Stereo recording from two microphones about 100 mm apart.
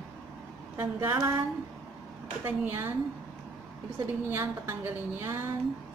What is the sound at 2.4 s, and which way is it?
Speech, 20° right (ahead or behind).